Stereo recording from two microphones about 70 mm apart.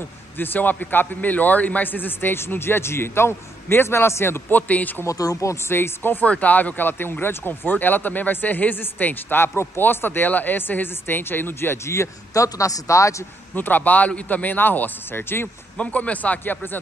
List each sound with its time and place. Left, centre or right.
0.4 s speech: left
5.0 s speech: left
13.6 s speech: left
15.8 s speech: left